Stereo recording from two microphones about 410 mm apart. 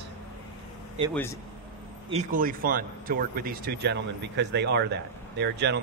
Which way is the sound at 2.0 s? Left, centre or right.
Centre.